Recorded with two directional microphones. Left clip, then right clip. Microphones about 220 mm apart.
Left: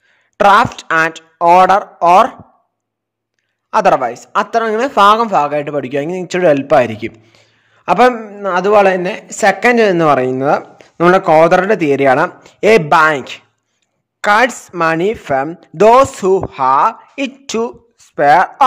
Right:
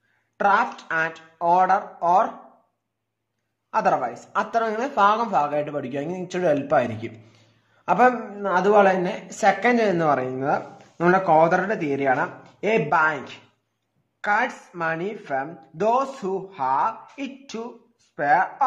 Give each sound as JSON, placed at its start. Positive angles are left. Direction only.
{"t": 0.4, "sound": "speech", "side_deg": 50}
{"t": 3.7, "sound": "speech", "side_deg": 45}